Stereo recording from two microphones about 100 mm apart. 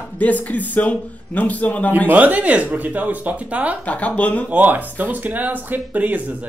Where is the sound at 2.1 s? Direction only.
15° right (ahead or behind).